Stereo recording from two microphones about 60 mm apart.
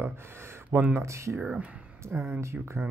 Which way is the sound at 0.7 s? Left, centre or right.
Right.